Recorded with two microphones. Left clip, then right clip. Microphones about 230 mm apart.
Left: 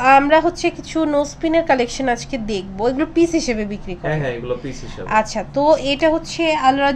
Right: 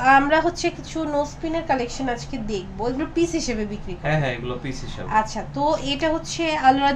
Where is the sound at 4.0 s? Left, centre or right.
Centre.